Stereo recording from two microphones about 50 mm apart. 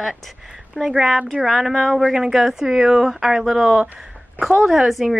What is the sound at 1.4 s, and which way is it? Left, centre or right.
Speech, centre.